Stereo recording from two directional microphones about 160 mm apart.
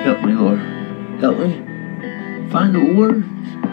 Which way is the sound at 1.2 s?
35° left (ahead or behind).